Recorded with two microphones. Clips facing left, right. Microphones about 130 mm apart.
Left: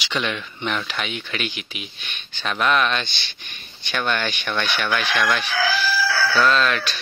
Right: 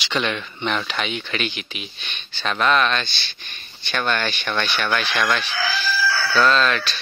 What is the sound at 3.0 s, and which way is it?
Speech, 20° left (ahead or behind).